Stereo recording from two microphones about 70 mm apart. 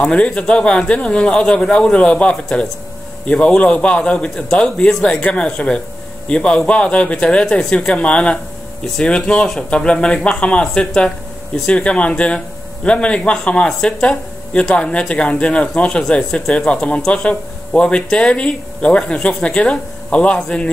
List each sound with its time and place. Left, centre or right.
0.0 s speech: centre